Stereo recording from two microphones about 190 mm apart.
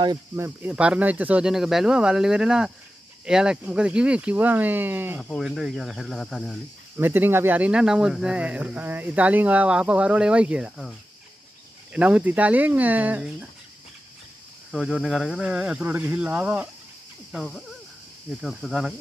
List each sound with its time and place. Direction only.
0.0 s speech: 20° right (ahead or behind)
0.6 s speech: 5° right (ahead or behind)
5.3 s speech: centre (ahead or behind)
7.0 s speech: 10° right (ahead or behind)
14.7 s speech: centre (ahead or behind)